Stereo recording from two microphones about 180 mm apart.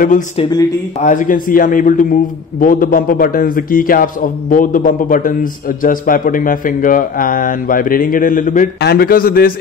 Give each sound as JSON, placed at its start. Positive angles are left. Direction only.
{"t": 0.4, "sound": "speech", "side_deg": 20}
{"t": 1.0, "sound": "a man's voice", "side_deg": 45}
{"t": 8.8, "sound": "a man's voice", "side_deg": 55}